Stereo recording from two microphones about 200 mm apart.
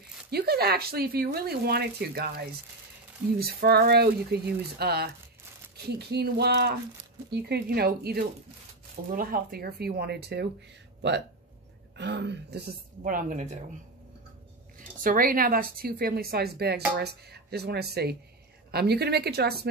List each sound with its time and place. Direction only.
0.3 s a woman's voice: 50° right (ahead or behind)
14.8 s speech: 45° right (ahead or behind)